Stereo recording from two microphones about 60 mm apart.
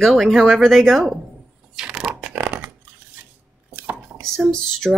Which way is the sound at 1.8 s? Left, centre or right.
Centre.